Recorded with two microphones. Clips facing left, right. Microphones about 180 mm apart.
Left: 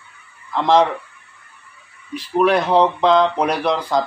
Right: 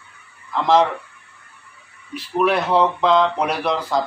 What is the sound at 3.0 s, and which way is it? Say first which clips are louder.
Speech: left 2 dB; 5° right (ahead or behind).